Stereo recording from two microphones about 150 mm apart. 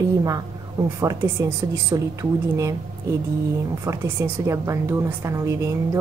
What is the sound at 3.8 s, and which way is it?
A woman's voice, 20° right (ahead or behind).